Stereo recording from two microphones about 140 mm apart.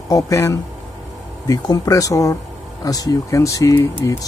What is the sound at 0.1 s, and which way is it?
Speech, 20° left (ahead or behind).